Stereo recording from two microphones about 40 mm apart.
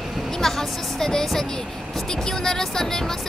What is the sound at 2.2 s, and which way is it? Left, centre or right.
Vehicle, centre.